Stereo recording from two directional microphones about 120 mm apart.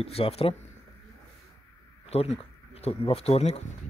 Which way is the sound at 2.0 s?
60° left (ahead or behind).